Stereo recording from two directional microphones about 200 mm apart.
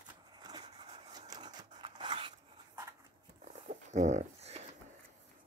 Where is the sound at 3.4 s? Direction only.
35° right (ahead or behind).